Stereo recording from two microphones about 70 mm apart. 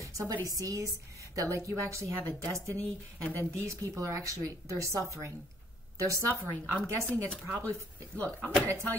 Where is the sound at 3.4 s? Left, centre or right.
Right.